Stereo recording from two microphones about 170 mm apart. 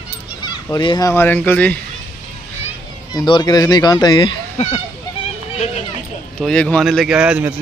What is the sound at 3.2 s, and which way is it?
Speech, 25° left (ahead or behind).